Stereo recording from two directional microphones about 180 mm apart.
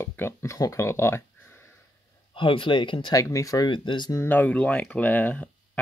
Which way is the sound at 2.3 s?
30° left (ahead or behind).